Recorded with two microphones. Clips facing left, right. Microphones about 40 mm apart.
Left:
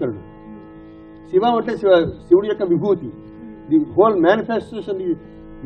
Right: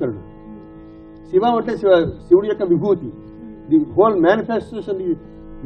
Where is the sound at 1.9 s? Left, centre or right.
Centre.